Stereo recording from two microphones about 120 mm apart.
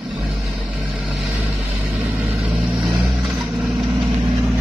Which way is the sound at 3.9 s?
45° right (ahead or behind).